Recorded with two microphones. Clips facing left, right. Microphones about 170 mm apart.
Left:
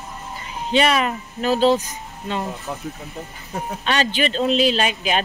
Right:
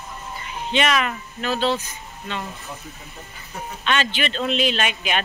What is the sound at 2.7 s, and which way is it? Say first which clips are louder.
Speech: left 7 dB; 55° left (ahead or behind).